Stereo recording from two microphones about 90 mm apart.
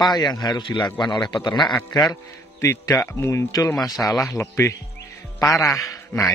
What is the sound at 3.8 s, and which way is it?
Speech, centre (ahead or behind).